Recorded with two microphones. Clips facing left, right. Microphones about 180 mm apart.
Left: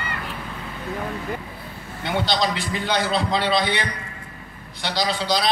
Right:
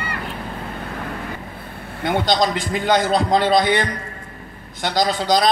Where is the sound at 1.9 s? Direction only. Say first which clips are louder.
Right 5 dB; 55° right (ahead or behind).